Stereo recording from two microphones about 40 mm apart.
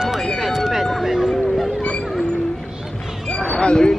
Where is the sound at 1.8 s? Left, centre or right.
Left.